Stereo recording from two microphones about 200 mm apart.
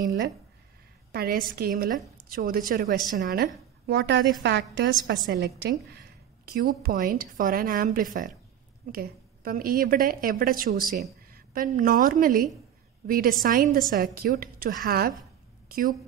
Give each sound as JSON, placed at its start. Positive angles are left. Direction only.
{"t": 1.1, "sound": "a woman's voice", "side_deg": -45}